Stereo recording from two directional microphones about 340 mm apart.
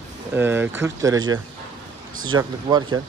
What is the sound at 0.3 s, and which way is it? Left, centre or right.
Speech, centre.